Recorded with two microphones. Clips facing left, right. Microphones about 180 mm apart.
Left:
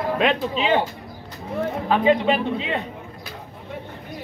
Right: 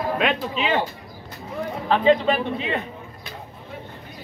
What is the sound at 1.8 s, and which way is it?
Speech, 10° left (ahead or behind).